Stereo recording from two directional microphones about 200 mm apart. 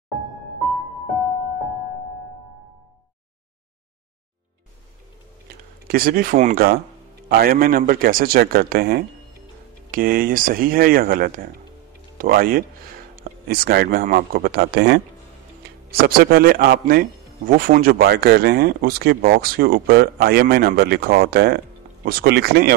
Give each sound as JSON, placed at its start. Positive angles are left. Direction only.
{"t": 5.9, "sound": "speech", "side_deg": -50}